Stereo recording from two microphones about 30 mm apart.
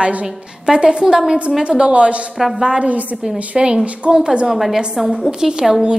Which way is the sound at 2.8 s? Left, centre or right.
Right.